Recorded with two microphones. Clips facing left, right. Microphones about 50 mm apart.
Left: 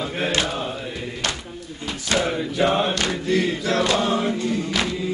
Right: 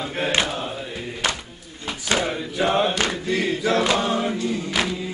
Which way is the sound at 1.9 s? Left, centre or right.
Right.